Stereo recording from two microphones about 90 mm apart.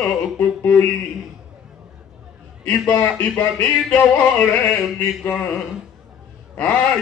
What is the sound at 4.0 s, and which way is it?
Music, 20° left (ahead or behind).